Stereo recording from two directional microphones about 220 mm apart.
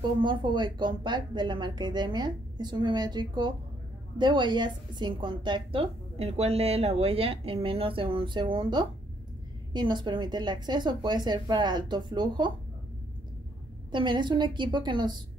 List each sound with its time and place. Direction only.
0.2 s a woman's voice: 20° right (ahead or behind)
13.9 s a woman's voice: 20° right (ahead or behind)